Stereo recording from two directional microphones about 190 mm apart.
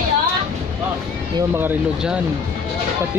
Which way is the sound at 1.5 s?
10° right (ahead or behind).